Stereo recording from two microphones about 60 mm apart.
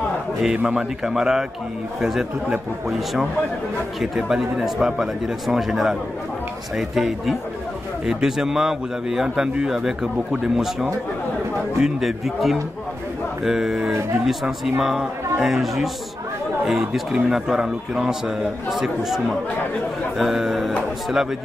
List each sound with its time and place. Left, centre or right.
0.7 s a man's voice: centre
4.2 s a man's voice: centre